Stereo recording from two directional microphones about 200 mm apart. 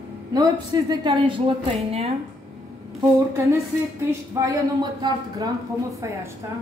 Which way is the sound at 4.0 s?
15° right (ahead or behind).